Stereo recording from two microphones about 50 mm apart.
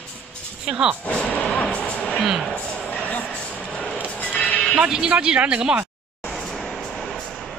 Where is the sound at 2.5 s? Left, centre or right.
Left.